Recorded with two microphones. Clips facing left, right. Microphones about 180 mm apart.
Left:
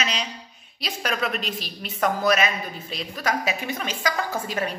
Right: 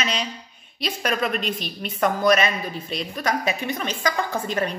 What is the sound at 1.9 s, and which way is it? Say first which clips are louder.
A woman's voice: right 2 dB; 5° left (ahead or behind).